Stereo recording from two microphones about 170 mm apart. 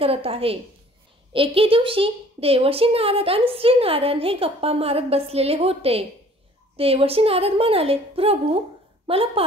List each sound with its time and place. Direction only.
0.0 s a woman's voice: 35° right (ahead or behind)